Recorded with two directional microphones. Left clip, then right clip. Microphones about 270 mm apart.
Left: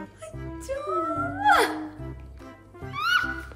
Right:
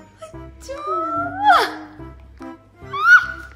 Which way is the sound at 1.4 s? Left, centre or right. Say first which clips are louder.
Right 6 dB; centre.